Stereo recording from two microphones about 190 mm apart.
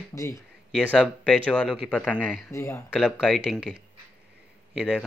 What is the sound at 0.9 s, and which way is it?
Speech, 5° left (ahead or behind).